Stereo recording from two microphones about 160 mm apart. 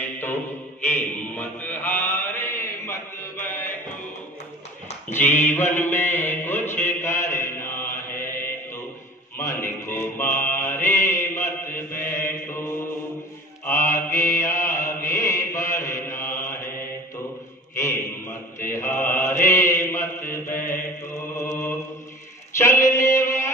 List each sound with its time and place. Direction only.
0.0 s mantra: 10° left (ahead or behind)
5.1 s mantra: 10° left (ahead or behind)
9.4 s music: 20° left (ahead or behind)
9.8 s mantra: 15° left (ahead or behind)
13.9 s mantra: 15° left (ahead or behind)
15.0 s mantra: 55° left (ahead or behind)
15.2 s mantra: 20° left (ahead or behind)
17.7 s a sound: 15° left (ahead or behind)
18.7 s mantra: 15° left (ahead or behind)
21.4 s mantra: 15° left (ahead or behind)